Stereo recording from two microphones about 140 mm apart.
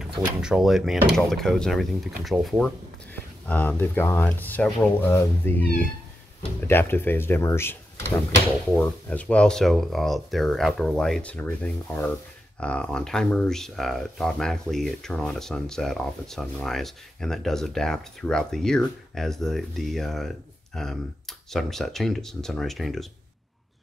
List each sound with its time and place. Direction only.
0.2 s speech: 5° right (ahead or behind)
3.4 s speech: 15° left (ahead or behind)
6.7 s speech: 15° left (ahead or behind)
8.7 s speech: 10° left (ahead or behind)